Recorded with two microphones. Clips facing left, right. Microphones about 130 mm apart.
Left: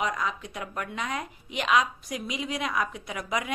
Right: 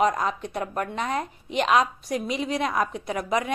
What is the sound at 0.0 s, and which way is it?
A woman's voice, 40° right (ahead or behind).